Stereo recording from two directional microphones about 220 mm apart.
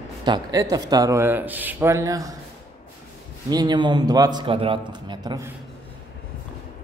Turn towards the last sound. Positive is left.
turn(degrees=-20)  # may be behind; listen again after turning